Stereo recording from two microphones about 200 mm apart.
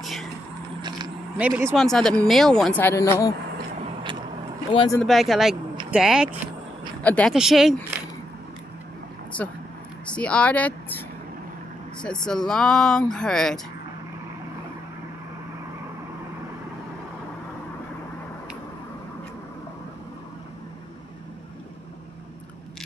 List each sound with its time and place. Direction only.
0.0 s a sound: centre (ahead or behind)
1.4 s speech: 10° right (ahead or behind)
1.8 s speech: 5° left (ahead or behind)
5.0 s speech: centre (ahead or behind)
7.0 s speech: 5° left (ahead or behind)
9.3 s speech: 5° left (ahead or behind)
12.0 s speech: 5° left (ahead or behind)